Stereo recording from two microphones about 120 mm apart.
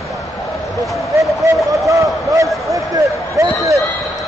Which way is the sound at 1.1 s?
25° right (ahead or behind).